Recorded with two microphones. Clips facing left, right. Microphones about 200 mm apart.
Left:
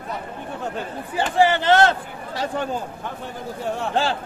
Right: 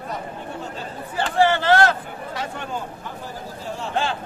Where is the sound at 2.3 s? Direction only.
35° left (ahead or behind).